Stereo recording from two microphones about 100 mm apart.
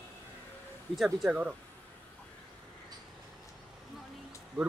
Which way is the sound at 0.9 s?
5° right (ahead or behind).